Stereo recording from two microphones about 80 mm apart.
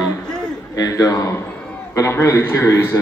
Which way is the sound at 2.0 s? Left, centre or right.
Left.